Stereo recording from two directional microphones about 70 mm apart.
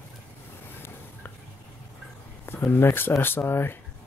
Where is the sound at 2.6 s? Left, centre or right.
Left.